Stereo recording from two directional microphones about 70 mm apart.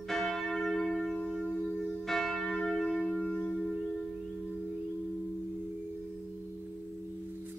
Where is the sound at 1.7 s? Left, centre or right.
Centre.